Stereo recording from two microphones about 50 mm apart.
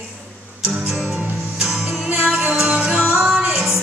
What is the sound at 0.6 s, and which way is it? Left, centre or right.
Music, right.